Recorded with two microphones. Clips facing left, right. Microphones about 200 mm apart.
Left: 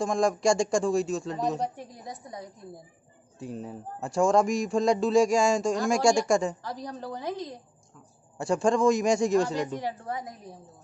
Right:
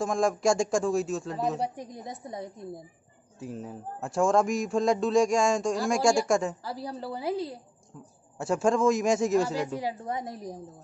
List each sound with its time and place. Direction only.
0.0 s speech: centre (ahead or behind)
1.8 s a woman's voice: 20° right (ahead or behind)
3.3 s speech: centre (ahead or behind)
10.1 s a woman's voice: 30° right (ahead or behind)